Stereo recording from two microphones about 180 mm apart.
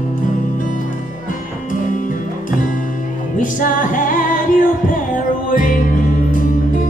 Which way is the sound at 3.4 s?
50° left (ahead or behind).